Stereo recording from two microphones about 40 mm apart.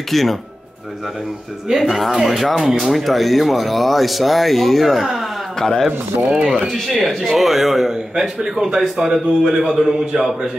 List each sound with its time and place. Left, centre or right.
0.1 s speech: centre
1.7 s a man's voice: centre
6.2 s speech: right
7.1 s a man's voice: centre; by 9.8 s right